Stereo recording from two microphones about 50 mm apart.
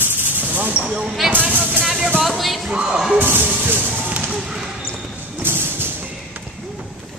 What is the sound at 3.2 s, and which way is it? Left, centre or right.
Music, right.